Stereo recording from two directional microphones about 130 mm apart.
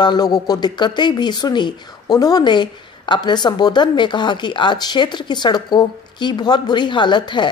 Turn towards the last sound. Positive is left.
turn(degrees=35)  # may be behind; listen again after turning